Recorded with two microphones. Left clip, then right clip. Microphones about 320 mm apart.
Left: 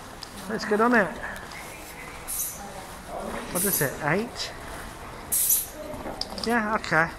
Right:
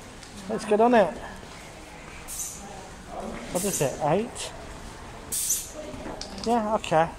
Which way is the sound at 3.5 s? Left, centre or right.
Right.